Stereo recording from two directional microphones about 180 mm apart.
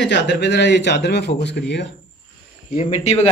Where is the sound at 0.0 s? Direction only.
85° left.